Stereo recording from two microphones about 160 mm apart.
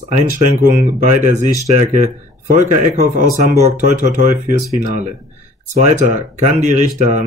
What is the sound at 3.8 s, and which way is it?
Speech, 55° right (ahead or behind).